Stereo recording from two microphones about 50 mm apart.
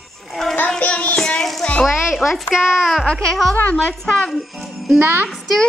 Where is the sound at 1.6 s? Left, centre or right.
Centre.